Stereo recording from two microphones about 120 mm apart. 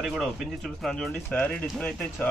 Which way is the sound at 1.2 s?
15° left (ahead or behind).